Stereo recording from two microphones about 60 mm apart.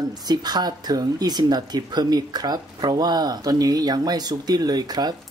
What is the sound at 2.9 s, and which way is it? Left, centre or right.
Speech, right.